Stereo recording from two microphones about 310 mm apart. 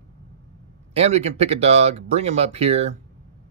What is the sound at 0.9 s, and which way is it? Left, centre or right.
Speech, centre.